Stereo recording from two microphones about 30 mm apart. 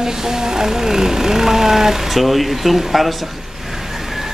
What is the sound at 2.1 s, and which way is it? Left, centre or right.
Speech, centre.